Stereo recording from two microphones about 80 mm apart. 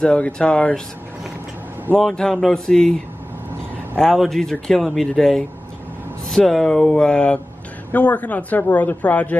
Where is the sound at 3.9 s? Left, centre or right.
Centre.